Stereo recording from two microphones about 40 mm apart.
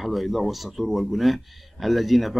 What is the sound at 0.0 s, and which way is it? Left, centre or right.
Speech, centre.